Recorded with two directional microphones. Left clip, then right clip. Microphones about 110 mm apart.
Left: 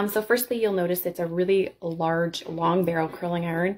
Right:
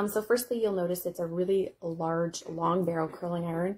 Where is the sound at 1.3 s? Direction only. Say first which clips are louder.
Left 6 dB; 25° right (ahead or behind).